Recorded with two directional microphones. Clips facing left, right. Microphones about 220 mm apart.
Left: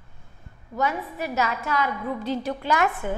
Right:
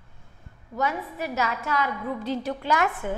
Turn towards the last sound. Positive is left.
turn(degrees=15)  # may be behind; listen again after turning